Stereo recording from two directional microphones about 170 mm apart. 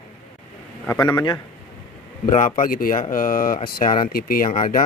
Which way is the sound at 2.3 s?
50° left (ahead or behind).